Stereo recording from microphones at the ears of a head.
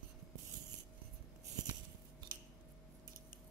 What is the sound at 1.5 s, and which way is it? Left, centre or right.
Scissors, right.